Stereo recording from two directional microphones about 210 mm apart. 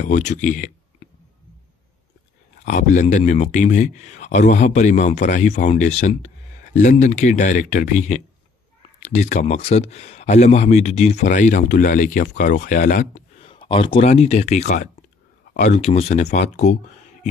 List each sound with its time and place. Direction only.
0.0 s speech: 35° left (ahead or behind)
2.6 s speech: 35° left (ahead or behind)